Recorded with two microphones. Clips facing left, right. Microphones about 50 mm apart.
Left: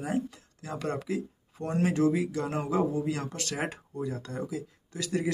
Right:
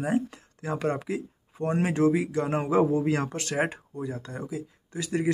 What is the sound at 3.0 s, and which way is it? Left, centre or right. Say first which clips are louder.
Speech: right 6 dB; right.